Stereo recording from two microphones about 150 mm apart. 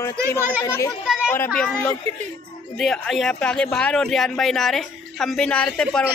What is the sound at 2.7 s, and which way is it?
Speech, 5° left (ahead or behind).